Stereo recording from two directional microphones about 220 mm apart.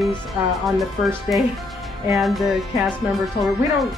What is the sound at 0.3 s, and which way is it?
Speech, centre (ahead or behind).